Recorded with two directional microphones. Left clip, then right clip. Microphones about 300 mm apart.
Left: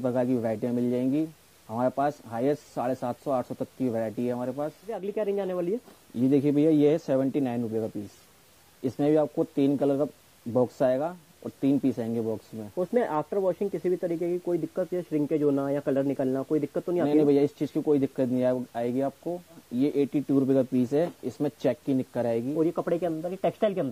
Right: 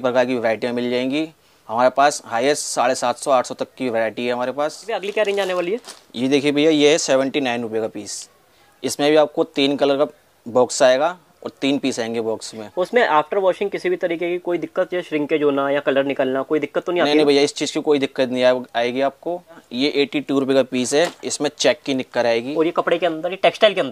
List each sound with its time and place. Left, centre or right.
0.0 s speech: centre
8.9 s speech: centre
10.0 s speech: centre
10.8 s speech: centre